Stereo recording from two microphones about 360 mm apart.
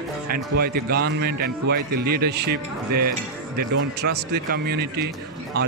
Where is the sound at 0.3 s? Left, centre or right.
Right.